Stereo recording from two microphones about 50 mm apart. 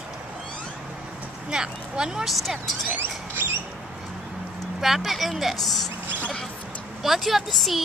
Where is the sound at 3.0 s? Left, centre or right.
Right.